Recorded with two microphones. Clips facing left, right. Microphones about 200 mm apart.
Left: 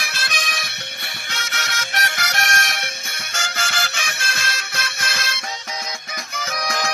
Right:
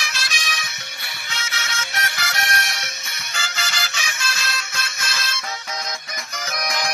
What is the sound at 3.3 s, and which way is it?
Music, 55° left (ahead or behind).